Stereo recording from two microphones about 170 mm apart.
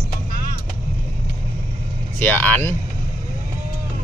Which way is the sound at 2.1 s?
10° left (ahead or behind).